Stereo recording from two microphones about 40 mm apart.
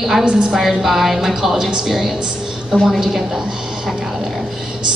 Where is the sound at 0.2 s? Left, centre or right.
Right.